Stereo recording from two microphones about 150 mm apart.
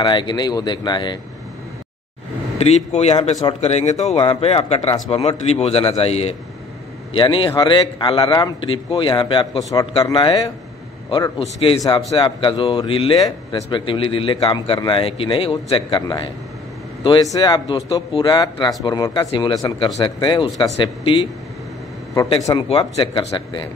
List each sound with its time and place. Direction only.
0.0 s a man's voice: 30° left (ahead or behind)
2.6 s a man's voice: 50° left (ahead or behind); by 9.8 s 25° left (ahead or behind)
10.1 s a man's voice: 35° left (ahead or behind)
22.3 s a man's voice: 35° left (ahead or behind)